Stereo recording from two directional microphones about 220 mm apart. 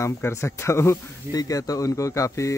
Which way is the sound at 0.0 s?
10° left (ahead or behind).